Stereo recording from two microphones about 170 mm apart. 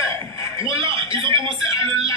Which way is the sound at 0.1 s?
15° left (ahead or behind).